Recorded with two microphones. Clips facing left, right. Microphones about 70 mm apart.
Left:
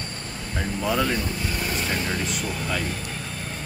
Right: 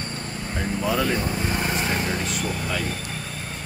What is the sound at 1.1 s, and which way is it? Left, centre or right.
Vehicle, right.